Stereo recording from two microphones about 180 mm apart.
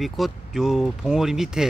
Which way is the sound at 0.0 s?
Centre (ahead or behind).